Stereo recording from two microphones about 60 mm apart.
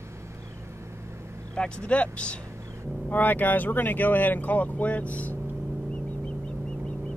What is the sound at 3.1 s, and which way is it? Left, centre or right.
Speech, left.